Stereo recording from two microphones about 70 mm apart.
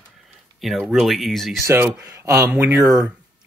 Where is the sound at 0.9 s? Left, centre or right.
Centre.